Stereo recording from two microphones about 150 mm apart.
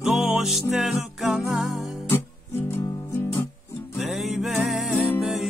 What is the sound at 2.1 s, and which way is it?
Guitar, 15° left (ahead or behind).